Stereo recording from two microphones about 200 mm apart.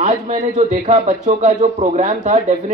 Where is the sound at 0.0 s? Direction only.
35° right (ahead or behind).